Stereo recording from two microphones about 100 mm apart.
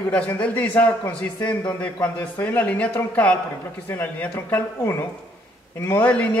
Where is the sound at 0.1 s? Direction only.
15° left (ahead or behind).